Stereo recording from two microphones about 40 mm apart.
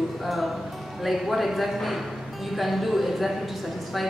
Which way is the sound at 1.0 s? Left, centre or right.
Centre.